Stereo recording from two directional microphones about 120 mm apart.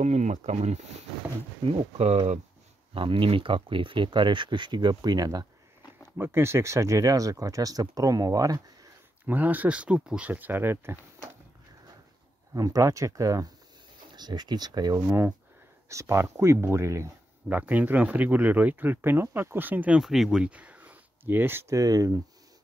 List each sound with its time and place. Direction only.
0.0 s speech: 75° right (ahead or behind)
2.9 s speech: 45° right (ahead or behind)
6.1 s speech: 20° right (ahead or behind)
9.2 s speech: 15° right (ahead or behind)
12.5 s speech: 30° right (ahead or behind)
15.0 s speech: 15° right (ahead or behind)